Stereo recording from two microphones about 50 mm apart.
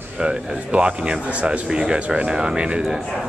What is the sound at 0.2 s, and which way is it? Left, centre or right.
Speech, centre.